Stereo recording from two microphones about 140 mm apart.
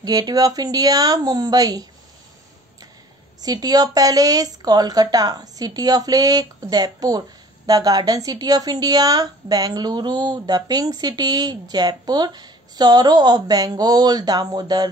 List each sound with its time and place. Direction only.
0.0 s speech: 30° right (ahead or behind)
3.4 s speech: 25° right (ahead or behind)